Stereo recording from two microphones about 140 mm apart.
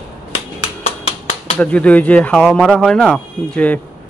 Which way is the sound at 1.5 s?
10° left (ahead or behind).